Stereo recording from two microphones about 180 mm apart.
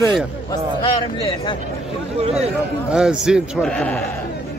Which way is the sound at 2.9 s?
5° right (ahead or behind).